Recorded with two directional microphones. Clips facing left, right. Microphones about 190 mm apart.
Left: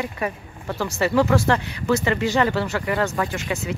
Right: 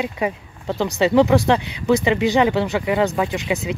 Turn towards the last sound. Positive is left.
turn(degrees=-15)  # may be behind; listen again after turning